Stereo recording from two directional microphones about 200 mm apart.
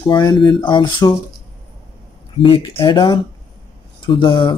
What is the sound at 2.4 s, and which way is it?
Speech, 25° left (ahead or behind).